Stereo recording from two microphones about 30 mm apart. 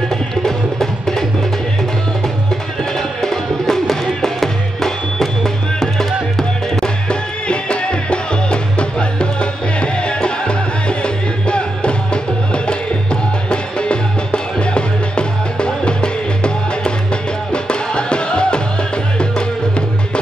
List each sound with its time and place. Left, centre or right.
0.1 s music: centre
2.8 s music: centre
6.8 s music: left